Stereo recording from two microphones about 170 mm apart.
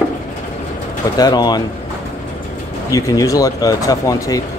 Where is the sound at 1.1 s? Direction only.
25° left (ahead or behind).